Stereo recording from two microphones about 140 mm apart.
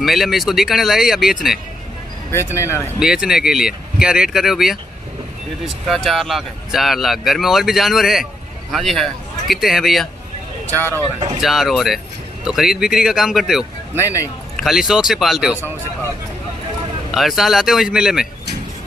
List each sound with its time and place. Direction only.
0.0 s speech: centre (ahead or behind)
2.3 s speech: 20° left (ahead or behind)
3.0 s speech: 5° right (ahead or behind)
5.9 s speech: centre (ahead or behind)
10.7 s speech: 15° left (ahead or behind)
11.4 s speech: centre (ahead or behind)
13.9 s speech: 20° left (ahead or behind)
14.6 s speech: centre (ahead or behind)
17.1 s speech: centre (ahead or behind)